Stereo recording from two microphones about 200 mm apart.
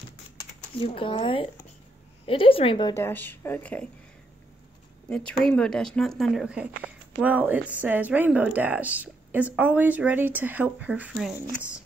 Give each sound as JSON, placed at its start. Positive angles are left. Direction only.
{"t": 0.7, "sound": "a woman's voice", "side_deg": 25}
{"t": 3.0, "sound": "speech", "side_deg": 10}
{"t": 5.1, "sound": "speech", "side_deg": 5}